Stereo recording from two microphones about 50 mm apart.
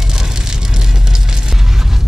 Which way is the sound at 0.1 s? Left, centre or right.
Centre.